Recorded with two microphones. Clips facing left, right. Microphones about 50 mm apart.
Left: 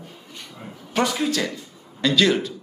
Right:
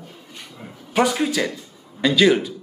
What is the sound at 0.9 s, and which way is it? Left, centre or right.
Speech, centre.